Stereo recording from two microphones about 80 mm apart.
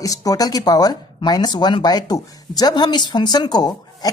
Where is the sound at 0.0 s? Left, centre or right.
Left.